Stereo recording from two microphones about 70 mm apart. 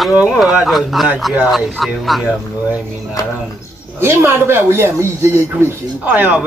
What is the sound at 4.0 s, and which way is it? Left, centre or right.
Speech, right.